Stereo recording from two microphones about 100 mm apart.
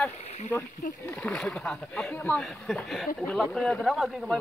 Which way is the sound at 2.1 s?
20° left (ahead or behind).